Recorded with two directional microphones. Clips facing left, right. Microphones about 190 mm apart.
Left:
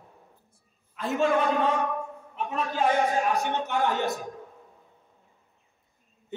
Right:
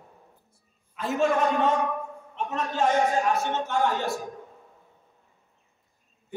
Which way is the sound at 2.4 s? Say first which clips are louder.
Right 1 dB; 10° left (ahead or behind).